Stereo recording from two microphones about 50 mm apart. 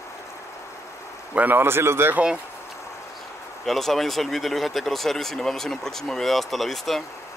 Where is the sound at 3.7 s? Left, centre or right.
Centre.